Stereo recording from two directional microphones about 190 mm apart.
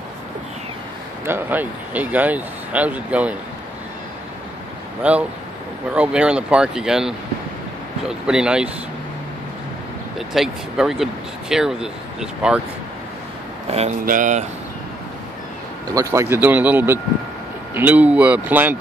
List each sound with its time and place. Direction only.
1.2 s speech: 10° right (ahead or behind)
5.0 s speech: 10° right (ahead or behind)
10.1 s speech: centre (ahead or behind)
13.7 s speech: 35° right (ahead or behind)
15.9 s speech: 15° right (ahead or behind)